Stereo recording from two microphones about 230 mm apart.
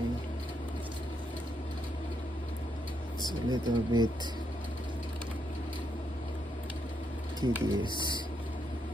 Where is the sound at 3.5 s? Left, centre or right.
Centre.